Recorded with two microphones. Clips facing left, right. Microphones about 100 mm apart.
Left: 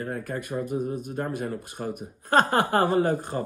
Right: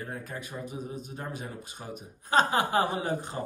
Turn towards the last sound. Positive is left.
turn(degrees=50)  # may be behind; listen again after turning